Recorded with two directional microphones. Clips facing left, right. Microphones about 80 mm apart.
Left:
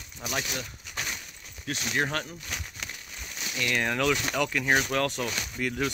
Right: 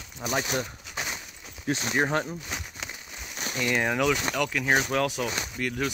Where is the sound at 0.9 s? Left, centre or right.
Right.